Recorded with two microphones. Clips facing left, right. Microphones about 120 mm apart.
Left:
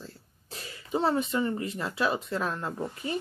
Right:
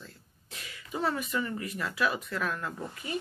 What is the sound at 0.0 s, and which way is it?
Speech, 35° left (ahead or behind).